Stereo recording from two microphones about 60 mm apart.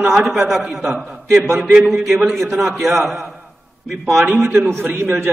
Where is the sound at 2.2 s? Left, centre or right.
Centre.